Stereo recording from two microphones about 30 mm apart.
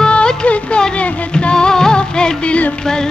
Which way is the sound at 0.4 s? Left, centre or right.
Left.